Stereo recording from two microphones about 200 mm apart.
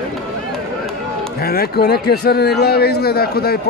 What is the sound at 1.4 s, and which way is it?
Speech, 50° left (ahead or behind).